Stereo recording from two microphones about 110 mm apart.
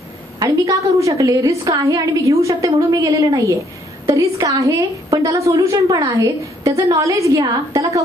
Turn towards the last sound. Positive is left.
turn(degrees=-30)  # may be behind; listen again after turning